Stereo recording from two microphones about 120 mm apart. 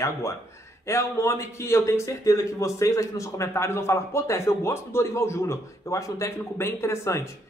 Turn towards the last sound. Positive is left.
turn(degrees=25)  # may be behind; listen again after turning